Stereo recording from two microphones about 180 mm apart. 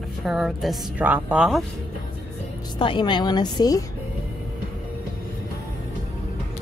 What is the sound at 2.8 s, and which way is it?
A woman's voice, 25° left (ahead or behind).